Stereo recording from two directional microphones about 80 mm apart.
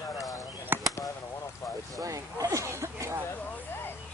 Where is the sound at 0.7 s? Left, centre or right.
Right.